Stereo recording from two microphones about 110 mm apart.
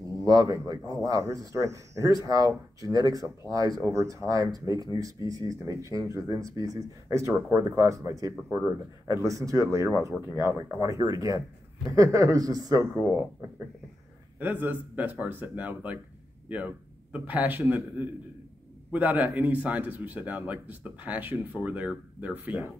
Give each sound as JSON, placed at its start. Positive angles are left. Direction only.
{"t": 0.0, "sound": "speech", "side_deg": -35}
{"t": 8.5, "sound": "speech", "side_deg": -15}
{"t": 9.0, "sound": "speech", "side_deg": -30}
{"t": 14.4, "sound": "a man's voice", "side_deg": -15}